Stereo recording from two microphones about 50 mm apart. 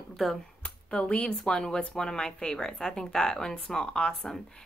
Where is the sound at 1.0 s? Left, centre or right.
Left.